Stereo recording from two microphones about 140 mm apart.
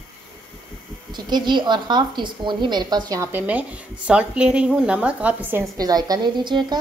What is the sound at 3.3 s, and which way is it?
Speech, 10° right (ahead or behind).